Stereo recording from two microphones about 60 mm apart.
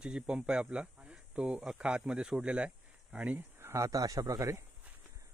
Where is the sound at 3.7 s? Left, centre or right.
Right.